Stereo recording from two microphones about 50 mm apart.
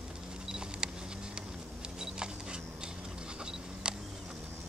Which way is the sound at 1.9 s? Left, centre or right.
Centre.